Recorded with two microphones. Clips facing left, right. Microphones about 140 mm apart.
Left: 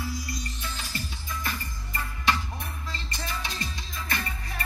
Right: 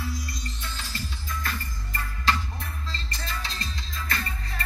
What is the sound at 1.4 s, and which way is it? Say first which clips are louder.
Music: even; 15° left (ahead or behind).